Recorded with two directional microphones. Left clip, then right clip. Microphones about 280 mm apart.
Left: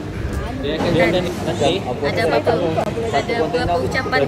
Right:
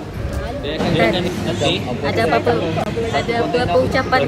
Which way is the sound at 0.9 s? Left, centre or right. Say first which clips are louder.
Right 1 dB; left.